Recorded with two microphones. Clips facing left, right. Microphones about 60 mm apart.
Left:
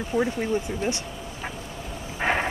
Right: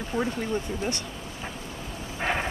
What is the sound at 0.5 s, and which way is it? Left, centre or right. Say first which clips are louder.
Speech: left 3 dB; centre.